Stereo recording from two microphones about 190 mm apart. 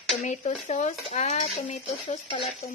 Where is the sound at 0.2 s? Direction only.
40° left (ahead or behind).